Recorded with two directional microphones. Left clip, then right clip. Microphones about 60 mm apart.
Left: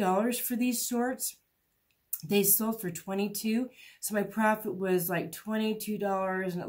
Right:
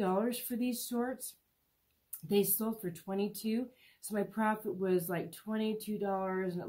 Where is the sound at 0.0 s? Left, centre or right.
Left.